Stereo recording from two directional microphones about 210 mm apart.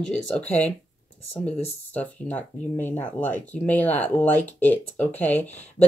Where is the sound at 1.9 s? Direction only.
5° left (ahead or behind).